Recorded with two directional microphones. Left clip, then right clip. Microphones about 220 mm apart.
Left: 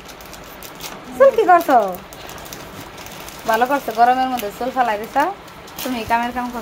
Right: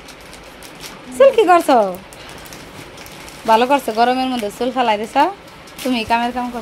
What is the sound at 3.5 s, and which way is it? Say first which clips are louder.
A woman's voice: right 4 dB; 25° right (ahead or behind).